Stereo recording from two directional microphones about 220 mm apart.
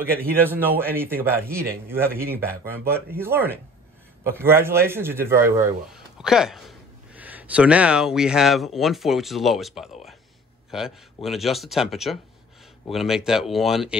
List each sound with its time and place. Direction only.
0.0 s a man's voice: 10° right (ahead or behind)